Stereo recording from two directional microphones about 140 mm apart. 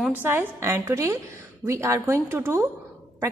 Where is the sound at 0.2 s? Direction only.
15° right (ahead or behind).